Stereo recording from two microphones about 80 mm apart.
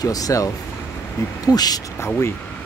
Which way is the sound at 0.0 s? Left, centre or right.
Left.